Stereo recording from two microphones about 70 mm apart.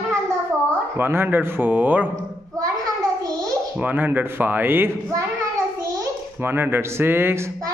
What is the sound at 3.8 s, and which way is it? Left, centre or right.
A child's voice, right.